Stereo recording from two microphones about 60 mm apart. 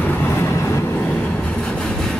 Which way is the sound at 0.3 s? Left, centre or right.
Left.